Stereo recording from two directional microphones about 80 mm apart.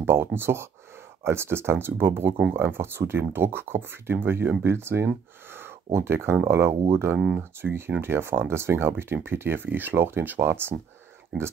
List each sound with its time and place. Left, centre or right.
0.0 s speech: right
11.3 s speech: centre